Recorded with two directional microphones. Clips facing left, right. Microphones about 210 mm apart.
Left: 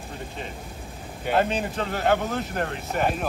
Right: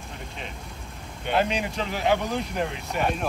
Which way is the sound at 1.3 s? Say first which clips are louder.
Left 1 dB; centre (ahead or behind).